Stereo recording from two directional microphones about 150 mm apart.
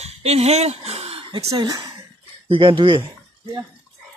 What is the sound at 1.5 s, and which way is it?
Speech, 25° right (ahead or behind).